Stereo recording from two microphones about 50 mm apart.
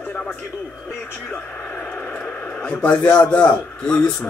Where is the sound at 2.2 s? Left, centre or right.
Left.